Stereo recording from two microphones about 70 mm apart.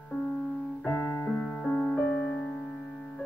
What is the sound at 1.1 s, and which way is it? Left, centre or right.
Music, centre.